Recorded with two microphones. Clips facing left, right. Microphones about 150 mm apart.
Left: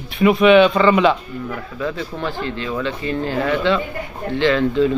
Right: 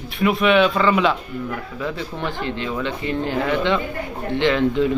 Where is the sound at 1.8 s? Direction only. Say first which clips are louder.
Left 3 dB; 15° right (ahead or behind).